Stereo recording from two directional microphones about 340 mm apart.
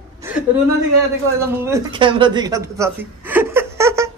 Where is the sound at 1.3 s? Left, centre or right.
Centre.